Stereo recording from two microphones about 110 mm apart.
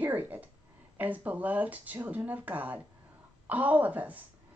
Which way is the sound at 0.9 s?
15° right (ahead or behind).